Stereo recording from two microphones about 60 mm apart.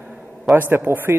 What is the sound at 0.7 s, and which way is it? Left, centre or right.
Speech, right.